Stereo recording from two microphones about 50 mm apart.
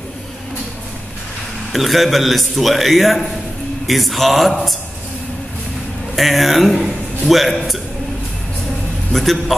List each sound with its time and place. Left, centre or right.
1.7 s a man's voice: centre
6.1 s a man's voice: centre
9.1 s a man's voice: centre